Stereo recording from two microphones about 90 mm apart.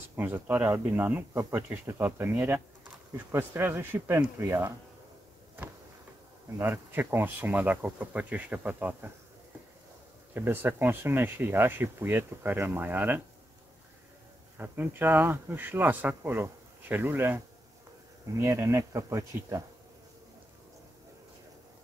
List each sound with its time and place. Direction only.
0.1 s speech: 25° right (ahead or behind)
6.6 s speech: 25° right (ahead or behind)
10.3 s speech: 25° right (ahead or behind)
14.6 s speech: 25° right (ahead or behind)
18.4 s speech: 35° right (ahead or behind)